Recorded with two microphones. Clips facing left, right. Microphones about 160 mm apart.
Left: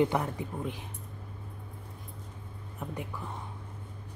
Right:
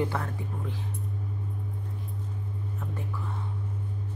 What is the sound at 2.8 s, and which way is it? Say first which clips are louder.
Whispering: left 2 dB; 15° left (ahead or behind).